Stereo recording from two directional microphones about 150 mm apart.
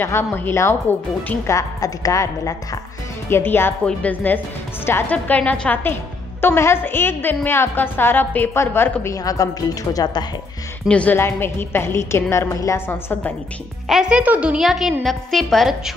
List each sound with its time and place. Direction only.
0.0 s a woman's voice: 15° left (ahead or behind)
10.9 s a woman's voice: 10° left (ahead or behind)
13.8 s a woman's voice: 5° right (ahead or behind)